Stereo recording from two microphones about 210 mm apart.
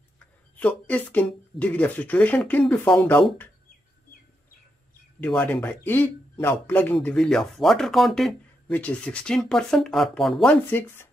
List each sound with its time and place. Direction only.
0.6 s speech: 5° left (ahead or behind)
5.2 s speech: 5° left (ahead or behind)